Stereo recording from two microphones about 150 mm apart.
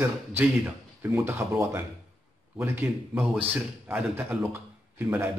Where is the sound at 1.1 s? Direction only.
15° right (ahead or behind).